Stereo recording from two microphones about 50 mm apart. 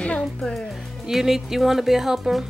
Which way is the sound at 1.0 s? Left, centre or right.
Centre.